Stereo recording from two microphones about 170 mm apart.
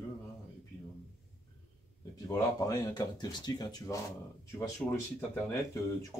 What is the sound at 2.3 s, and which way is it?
Speech, 20° left (ahead or behind).